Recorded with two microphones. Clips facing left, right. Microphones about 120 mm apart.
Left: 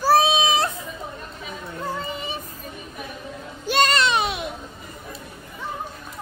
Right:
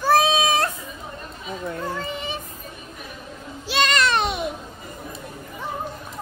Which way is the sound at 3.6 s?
45° left (ahead or behind).